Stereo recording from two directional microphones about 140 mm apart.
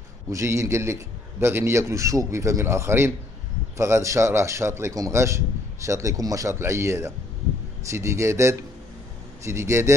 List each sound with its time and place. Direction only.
0.3 s a man's voice: 20° right (ahead or behind)